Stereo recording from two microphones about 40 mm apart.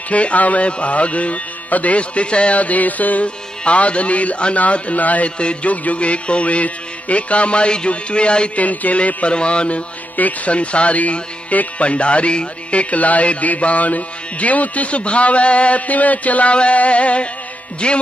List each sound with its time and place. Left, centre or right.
0.1 s music: left
3.6 s music: left
5.4 s music: left
8.5 s music: left
10.1 s music: left
12.9 s music: left